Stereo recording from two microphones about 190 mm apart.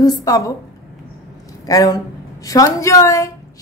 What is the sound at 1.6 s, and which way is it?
A woman's voice, 20° left (ahead or behind).